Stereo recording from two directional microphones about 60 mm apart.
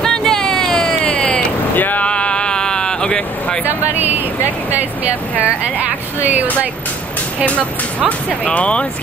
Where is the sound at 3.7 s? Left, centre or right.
Right.